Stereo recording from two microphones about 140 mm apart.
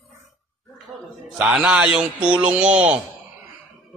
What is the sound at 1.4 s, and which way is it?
A man's voice, 5° right (ahead or behind).